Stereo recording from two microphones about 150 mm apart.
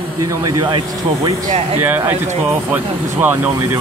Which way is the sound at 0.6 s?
30° right (ahead or behind).